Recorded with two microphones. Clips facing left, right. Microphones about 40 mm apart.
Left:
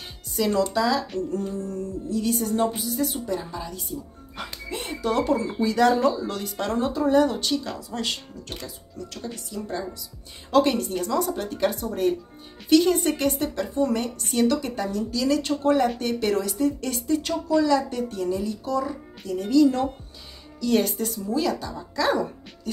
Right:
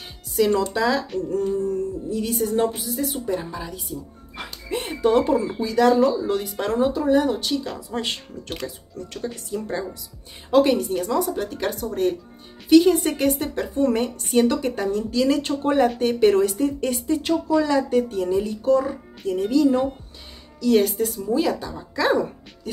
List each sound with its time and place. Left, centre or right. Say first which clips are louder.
0.6 s speech: right 1 dB; right
5.3 s speech: right 3 dB; centre
5.6 s speech: right 2 dB; centre
6.2 s speech: right 4 dB; centre
7.9 s speech: right 3 dB; right
10.5 s speech: right 3 dB; centre
11.4 s speech: left 1 dB; centre
13.6 s speech: right 3 dB; right
16.9 s speech: right 3 dB; centre
19.5 s speech: even; centre
20.6 s speech: right 4 dB; centre
21.1 s speech: right 3 dB; centre